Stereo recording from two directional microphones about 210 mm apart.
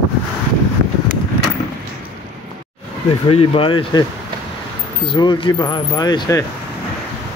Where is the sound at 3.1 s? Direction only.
25° left (ahead or behind).